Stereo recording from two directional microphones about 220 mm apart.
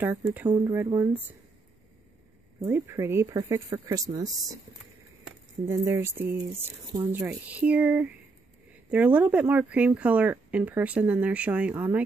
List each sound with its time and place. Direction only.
0.5 s speech: 15° right (ahead or behind)
2.6 s speech: 10° right (ahead or behind)
5.7 s speech: 10° right (ahead or behind)